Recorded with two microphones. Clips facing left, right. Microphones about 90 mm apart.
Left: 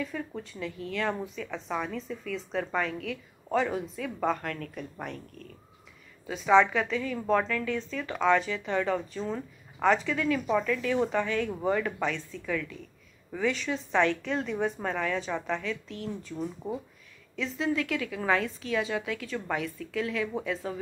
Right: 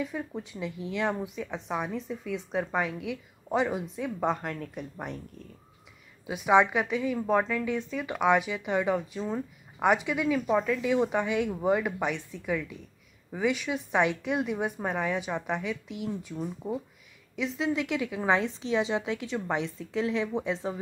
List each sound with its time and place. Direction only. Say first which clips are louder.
0.3 s a woman's voice: right 1 dB; 15° right (ahead or behind)
6.2 s a woman's voice: left 1 dB; 15° right (ahead or behind)